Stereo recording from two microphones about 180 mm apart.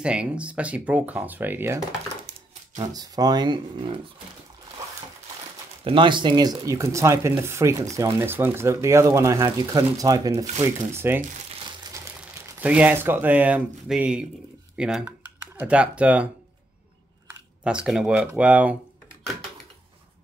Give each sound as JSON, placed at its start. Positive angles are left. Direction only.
{"t": 0.0, "sound": "speech", "side_deg": -5}
{"t": 2.9, "sound": "speech", "side_deg": -20}
{"t": 5.9, "sound": "speech", "side_deg": -25}
{"t": 12.5, "sound": "speech", "side_deg": -10}
{"t": 17.6, "sound": "speech", "side_deg": -5}